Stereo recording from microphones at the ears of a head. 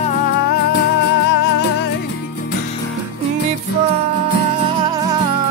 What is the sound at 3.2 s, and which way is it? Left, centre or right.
Music, right.